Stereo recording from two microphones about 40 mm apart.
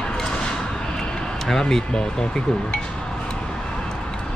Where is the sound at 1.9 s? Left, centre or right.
Centre.